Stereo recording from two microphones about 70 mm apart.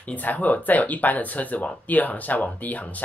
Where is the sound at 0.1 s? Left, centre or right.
Left.